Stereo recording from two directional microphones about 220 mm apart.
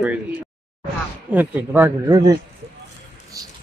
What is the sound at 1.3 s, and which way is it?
Speech, 10° right (ahead or behind).